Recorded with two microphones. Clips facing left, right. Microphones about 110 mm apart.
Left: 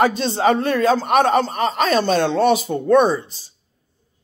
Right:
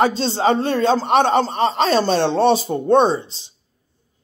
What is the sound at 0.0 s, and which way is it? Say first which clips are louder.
Speech: even; 30° right (ahead or behind).